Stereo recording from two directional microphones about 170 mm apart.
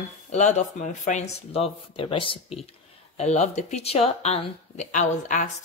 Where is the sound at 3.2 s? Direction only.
40° left (ahead or behind).